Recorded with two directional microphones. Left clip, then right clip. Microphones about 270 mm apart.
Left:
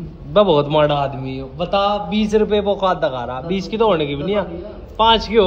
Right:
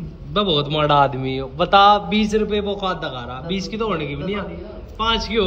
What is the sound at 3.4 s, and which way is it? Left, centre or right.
Speech, right.